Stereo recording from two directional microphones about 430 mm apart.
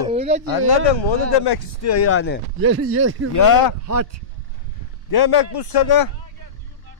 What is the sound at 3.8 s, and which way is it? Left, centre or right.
Speech, right.